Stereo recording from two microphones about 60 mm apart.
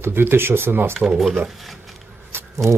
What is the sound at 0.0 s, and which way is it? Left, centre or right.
Speech, right.